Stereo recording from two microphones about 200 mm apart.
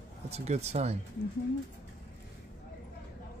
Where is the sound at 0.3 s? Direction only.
35° right (ahead or behind).